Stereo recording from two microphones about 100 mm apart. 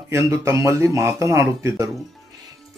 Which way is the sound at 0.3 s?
30° right (ahead or behind).